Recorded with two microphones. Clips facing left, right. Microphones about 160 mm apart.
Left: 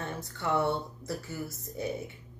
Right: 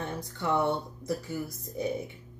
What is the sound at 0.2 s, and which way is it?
Speech, 15° right (ahead or behind).